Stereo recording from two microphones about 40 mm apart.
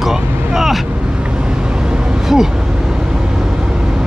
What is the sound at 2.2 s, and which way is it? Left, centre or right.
Speech, centre.